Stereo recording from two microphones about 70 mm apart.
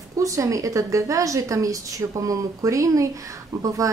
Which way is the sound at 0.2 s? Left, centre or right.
Right.